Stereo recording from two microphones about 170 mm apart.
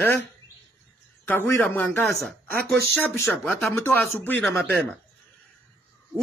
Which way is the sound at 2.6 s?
70° right (ahead or behind).